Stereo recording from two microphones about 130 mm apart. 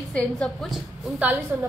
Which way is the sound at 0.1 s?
5° left (ahead or behind).